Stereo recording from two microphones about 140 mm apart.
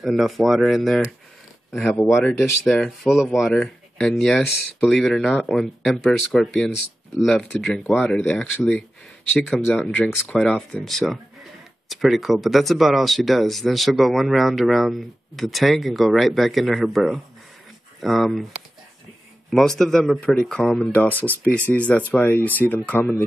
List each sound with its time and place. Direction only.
0.0 s speech: centre (ahead or behind)
2.0 s speech: 15° left (ahead or behind)
2.6 s speech: 5° left (ahead or behind)
19.5 s speech: 5° left (ahead or behind)